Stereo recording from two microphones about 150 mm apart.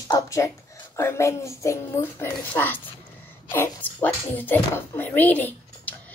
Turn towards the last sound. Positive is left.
turn(degrees=10)  # may be behind; listen again after turning